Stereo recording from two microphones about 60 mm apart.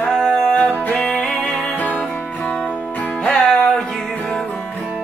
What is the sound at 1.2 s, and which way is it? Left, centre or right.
Music, centre.